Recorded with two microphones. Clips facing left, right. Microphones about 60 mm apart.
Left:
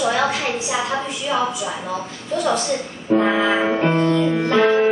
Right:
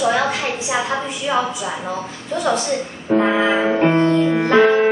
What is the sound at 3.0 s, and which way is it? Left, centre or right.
Music, right.